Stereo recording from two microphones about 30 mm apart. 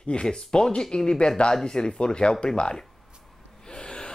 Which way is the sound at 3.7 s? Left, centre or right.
Left.